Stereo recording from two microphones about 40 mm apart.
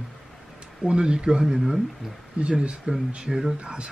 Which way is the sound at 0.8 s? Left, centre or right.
Right.